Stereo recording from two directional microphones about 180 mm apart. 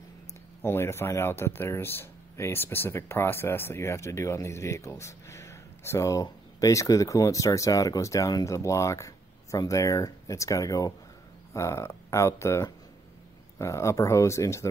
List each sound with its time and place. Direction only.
0.6 s speech: 15° left (ahead or behind)